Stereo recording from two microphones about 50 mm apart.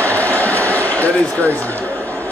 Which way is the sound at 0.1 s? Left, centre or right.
Left.